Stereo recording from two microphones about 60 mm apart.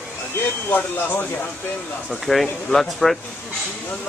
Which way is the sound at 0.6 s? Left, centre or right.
Left.